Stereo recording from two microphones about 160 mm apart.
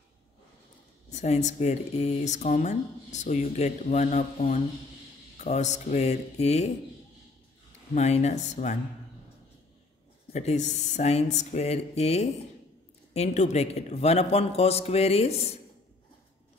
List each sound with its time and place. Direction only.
1.1 s speech: 45° left (ahead or behind)
7.9 s speech: 45° left (ahead or behind)
10.3 s a man's voice: 45° left (ahead or behind)